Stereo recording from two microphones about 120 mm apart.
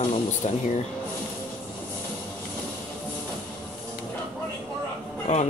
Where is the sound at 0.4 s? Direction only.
65° left (ahead or behind).